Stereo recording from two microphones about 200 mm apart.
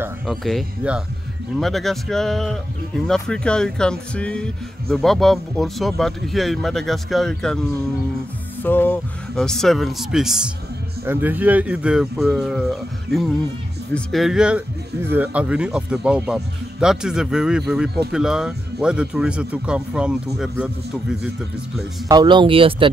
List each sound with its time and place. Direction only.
0.3 s speech: centre (ahead or behind)
8.6 s speech: 10° left (ahead or behind)
13.9 s speech: centre (ahead or behind)
22.0 s speech: 20° right (ahead or behind)